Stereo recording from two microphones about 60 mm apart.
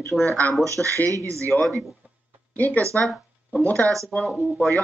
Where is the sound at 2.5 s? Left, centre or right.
Left.